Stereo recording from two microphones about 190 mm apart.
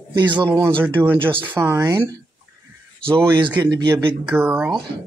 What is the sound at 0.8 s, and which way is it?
Speech, 10° right (ahead or behind).